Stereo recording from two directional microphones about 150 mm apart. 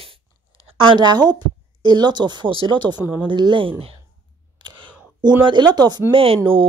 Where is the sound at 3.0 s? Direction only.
10° right (ahead or behind).